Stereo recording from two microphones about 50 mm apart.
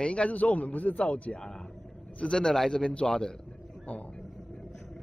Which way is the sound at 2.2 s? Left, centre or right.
Centre.